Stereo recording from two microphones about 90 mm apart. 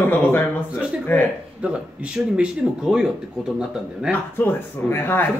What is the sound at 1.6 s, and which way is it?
Speech, 15° right (ahead or behind).